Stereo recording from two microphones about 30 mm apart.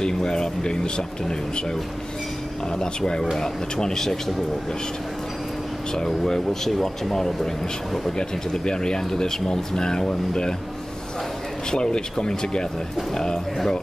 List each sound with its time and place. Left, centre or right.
0.0 s speech: left
3.3 s speech: centre
5.9 s speech: centre
8.2 s speech: left
11.7 s speech: left